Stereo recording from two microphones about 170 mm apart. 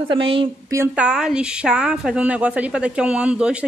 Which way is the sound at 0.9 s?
5° right (ahead or behind).